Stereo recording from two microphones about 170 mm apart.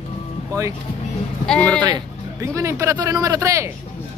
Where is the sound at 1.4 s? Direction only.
5° left (ahead or behind).